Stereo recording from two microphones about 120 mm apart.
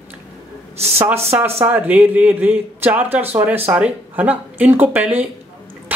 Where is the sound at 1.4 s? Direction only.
15° right (ahead or behind).